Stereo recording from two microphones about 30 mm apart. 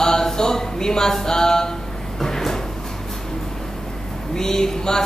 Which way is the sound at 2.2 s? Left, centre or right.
Centre.